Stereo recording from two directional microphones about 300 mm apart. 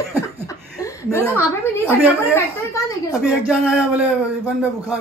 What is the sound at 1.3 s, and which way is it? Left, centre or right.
Speech, centre.